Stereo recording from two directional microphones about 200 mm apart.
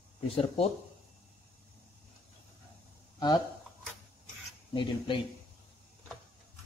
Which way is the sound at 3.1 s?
20° left (ahead or behind).